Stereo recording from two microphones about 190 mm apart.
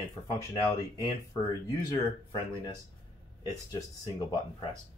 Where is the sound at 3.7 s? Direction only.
20° left (ahead or behind).